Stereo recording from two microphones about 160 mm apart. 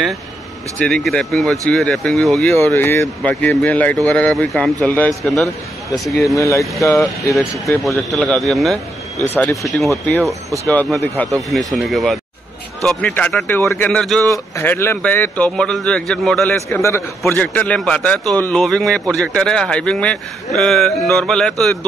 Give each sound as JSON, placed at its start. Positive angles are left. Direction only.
{"t": 0.7, "sound": "a man's voice", "side_deg": 5}
{"t": 2.5, "sound": "a man's voice", "side_deg": 15}
{"t": 6.1, "sound": "speech", "side_deg": 20}
{"t": 7.8, "sound": "a man's voice", "side_deg": 0}
{"t": 9.4, "sound": "speech", "side_deg": 20}
{"t": 10.7, "sound": "a man's voice", "side_deg": 10}
{"t": 13.6, "sound": "a man's voice", "side_deg": 15}
{"t": 13.8, "sound": "a man's voice", "side_deg": 5}
{"t": 14.6, "sound": "a man's voice", "side_deg": 15}
{"t": 16.6, "sound": "a man's voice", "side_deg": 15}